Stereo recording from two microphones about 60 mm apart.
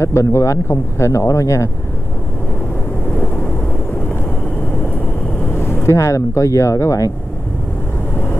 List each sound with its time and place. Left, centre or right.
0.0 s speech: left
5.5 s vehicle: left
5.9 s speech: left